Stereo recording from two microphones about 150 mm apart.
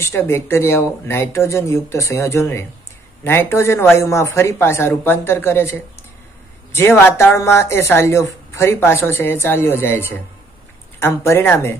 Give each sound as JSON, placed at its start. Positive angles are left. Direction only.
{"t": 0.0, "sound": "speech", "side_deg": 15}